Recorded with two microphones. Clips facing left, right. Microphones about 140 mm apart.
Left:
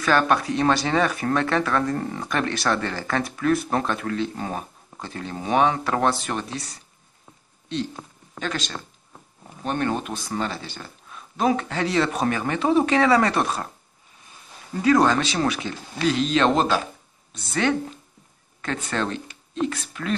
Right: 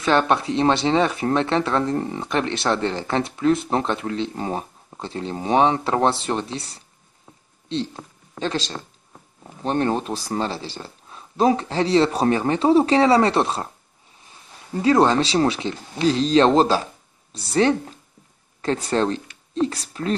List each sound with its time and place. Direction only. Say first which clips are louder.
0.0 s speech: right 1 dB; 25° right (ahead or behind)
14.8 s speech: right 2 dB; 30° right (ahead or behind)